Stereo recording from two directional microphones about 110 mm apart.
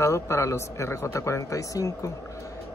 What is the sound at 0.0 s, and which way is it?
Speech, 25° left (ahead or behind).